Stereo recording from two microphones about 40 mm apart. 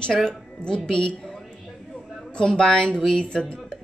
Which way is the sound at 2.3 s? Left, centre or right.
Left.